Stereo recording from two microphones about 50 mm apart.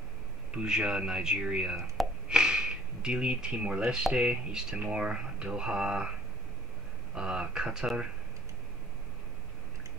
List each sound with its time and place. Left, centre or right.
0.6 s speech: centre
7.2 s speech: centre